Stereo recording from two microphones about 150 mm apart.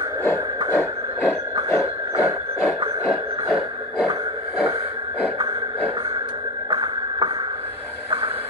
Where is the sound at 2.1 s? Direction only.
5° right (ahead or behind).